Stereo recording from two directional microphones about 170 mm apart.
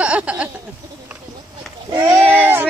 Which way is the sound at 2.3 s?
10° right (ahead or behind).